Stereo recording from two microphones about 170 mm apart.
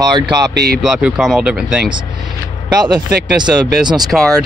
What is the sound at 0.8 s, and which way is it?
Speech, centre (ahead or behind).